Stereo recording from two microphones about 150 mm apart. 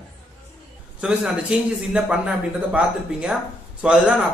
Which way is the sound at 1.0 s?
10° right (ahead or behind).